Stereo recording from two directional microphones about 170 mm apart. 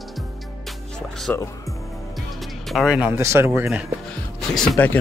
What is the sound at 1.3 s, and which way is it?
Speech, 10° left (ahead or behind).